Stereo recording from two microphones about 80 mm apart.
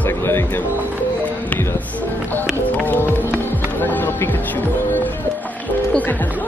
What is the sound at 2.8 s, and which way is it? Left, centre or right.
Music, left.